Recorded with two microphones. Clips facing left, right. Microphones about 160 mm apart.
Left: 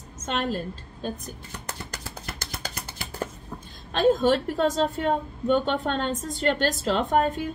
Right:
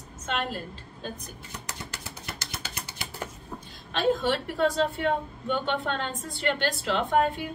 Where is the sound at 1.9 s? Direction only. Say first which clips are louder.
Left 2 dB; 45° left (ahead or behind).